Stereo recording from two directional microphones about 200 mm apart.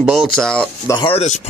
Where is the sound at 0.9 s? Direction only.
25° left (ahead or behind).